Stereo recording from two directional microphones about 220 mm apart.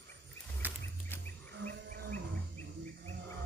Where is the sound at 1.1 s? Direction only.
10° left (ahead or behind).